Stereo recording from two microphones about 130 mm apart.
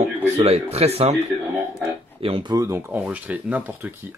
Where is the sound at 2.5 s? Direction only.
20° right (ahead or behind).